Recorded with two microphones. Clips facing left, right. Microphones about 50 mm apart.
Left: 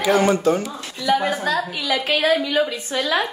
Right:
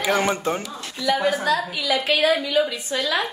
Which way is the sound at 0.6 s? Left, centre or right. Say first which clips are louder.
Left 1 dB; left.